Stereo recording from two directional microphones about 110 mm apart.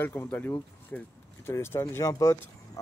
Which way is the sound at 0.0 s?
20° left (ahead or behind).